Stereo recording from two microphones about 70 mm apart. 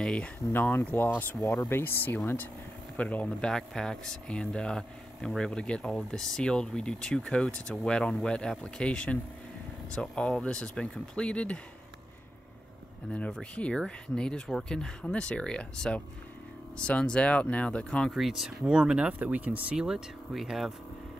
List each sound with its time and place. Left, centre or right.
0.0 s speech: centre
0.5 s speech: left
3.3 s speech: centre
13.1 s speech: centre
18.1 s speech: centre